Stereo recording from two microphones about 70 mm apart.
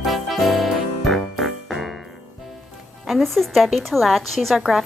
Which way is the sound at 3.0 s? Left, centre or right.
Centre.